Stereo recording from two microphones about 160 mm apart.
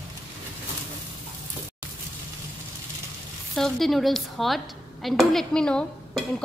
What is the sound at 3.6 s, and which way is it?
A woman's voice, centre (ahead or behind).